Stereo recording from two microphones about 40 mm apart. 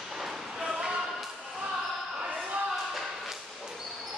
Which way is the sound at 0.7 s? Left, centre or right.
Centre.